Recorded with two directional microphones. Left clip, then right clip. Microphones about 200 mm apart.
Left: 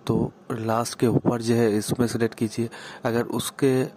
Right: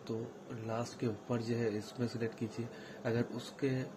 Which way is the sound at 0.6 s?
35° left (ahead or behind).